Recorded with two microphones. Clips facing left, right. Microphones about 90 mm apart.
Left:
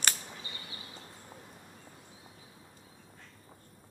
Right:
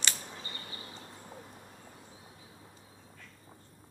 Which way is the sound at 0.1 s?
40° right (ahead or behind).